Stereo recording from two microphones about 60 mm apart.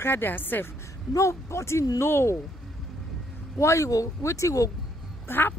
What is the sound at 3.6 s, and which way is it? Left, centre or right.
Speech, left.